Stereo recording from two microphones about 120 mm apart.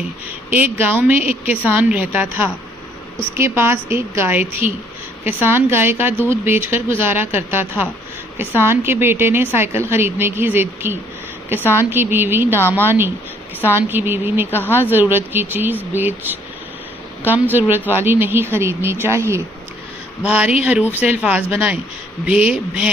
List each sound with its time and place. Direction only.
0.5 s speech: 15° right (ahead or behind)
3.3 s a woman's voice: 20° right (ahead or behind)
12.5 s a woman's voice: 15° left (ahead or behind)
12.8 s a woman's voice: 20° right (ahead or behind)
14.5 s speech: 20° left (ahead or behind)
14.8 s a woman's voice: 15° right (ahead or behind)
20.2 s speech: 10° right (ahead or behind)